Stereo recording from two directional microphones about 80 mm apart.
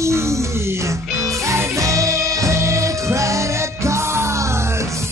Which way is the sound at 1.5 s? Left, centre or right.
Right.